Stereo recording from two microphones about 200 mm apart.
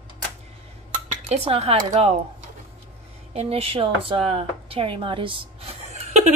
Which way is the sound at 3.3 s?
30° right (ahead or behind).